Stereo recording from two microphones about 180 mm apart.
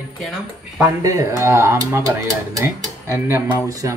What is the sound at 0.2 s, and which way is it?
Speech, centre (ahead or behind).